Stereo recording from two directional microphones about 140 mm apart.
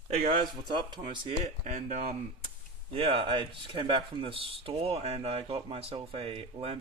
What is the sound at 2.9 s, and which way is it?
Speech, 40° right (ahead or behind).